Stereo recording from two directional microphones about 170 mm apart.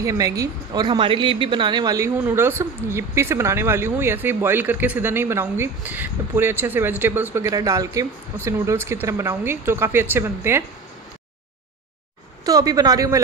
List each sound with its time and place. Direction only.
0.0 s a woman's voice: 20° right (ahead or behind)
12.4 s a woman's voice: 20° right (ahead or behind)